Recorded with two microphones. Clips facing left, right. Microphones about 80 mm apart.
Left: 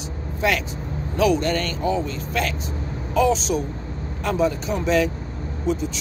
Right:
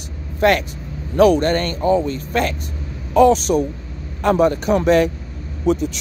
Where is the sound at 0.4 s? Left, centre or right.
Right.